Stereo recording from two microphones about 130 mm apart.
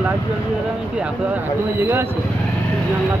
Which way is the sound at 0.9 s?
10° right (ahead or behind).